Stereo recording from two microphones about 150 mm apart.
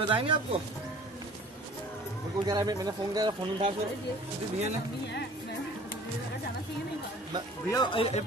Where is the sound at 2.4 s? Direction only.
25° right (ahead or behind).